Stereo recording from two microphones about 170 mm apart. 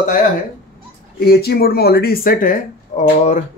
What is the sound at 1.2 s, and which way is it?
A man's voice, 65° left (ahead or behind).